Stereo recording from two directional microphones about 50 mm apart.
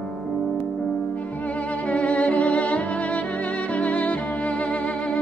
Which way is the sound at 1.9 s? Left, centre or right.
Left.